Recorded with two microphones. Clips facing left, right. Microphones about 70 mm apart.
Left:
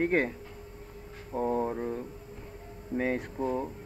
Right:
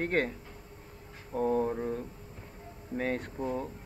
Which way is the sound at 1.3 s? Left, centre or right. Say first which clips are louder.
Even; centre.